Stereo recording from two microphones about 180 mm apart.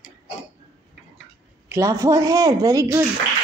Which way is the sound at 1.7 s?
15° right (ahead or behind).